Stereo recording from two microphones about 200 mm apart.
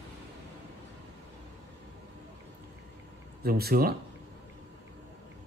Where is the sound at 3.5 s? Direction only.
50° right (ahead or behind).